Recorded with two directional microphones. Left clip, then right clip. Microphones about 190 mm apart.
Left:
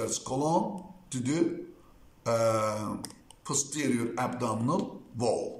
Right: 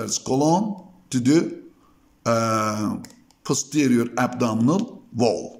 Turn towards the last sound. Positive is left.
turn(degrees=-50)  # may be behind; listen again after turning